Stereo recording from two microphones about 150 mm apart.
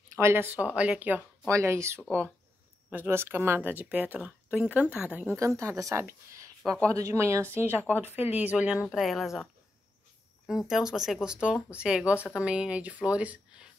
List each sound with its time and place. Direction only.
0.1 s speech: 15° right (ahead or behind)